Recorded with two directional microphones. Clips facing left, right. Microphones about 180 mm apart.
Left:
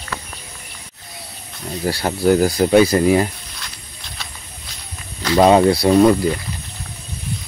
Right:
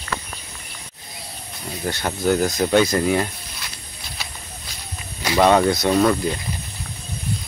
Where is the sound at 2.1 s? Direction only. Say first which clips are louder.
Left 5 dB; 10° left (ahead or behind).